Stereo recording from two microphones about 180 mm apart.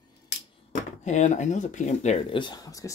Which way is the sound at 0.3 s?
75° left (ahead or behind).